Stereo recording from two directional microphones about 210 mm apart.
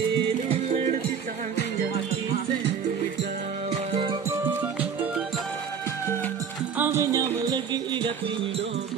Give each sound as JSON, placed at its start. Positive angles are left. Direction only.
{"t": 0.5, "sound": "music", "side_deg": -30}
{"t": 3.7, "sound": "music", "side_deg": -25}
{"t": 4.3, "sound": "music", "side_deg": -10}
{"t": 6.8, "sound": "music", "side_deg": -10}